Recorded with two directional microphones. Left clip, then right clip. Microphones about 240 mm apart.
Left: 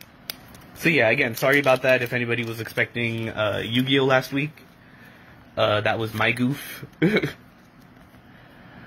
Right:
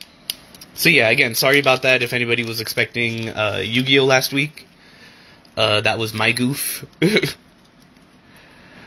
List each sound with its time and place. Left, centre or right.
0.8 s speech: right
5.5 s speech: right